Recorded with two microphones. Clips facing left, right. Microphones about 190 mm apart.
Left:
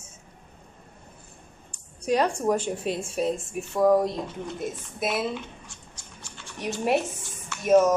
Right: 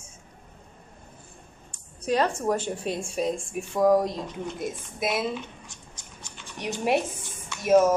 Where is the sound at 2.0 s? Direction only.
10° left (ahead or behind).